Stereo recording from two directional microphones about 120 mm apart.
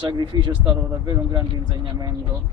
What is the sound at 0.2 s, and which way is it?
Speech, 40° right (ahead or behind).